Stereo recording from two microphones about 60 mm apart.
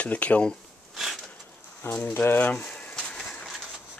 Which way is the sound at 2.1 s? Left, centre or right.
Left.